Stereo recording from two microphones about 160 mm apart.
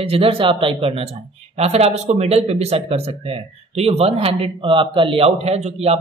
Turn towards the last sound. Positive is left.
turn(degrees=-40)  # may be behind; listen again after turning